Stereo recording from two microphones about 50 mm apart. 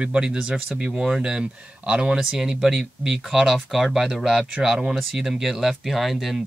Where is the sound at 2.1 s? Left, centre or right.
Centre.